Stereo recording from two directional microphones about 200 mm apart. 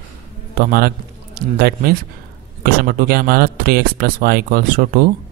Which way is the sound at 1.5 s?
50° right (ahead or behind).